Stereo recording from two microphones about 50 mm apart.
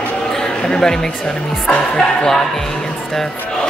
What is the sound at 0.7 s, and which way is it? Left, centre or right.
Speech, centre.